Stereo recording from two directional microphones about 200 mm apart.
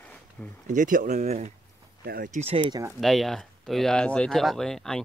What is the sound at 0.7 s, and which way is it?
Speech, 40° right (ahead or behind).